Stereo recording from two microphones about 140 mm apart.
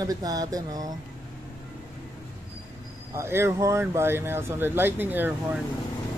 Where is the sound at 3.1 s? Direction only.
20° right (ahead or behind).